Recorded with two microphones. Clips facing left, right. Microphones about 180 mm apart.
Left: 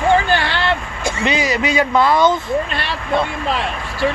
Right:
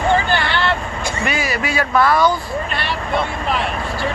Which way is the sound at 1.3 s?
20° left (ahead or behind).